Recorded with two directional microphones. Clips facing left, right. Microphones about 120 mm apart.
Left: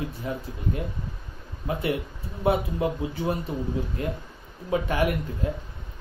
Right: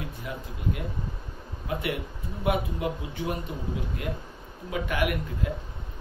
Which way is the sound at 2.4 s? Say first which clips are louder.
Left 4 dB; 30° left (ahead or behind).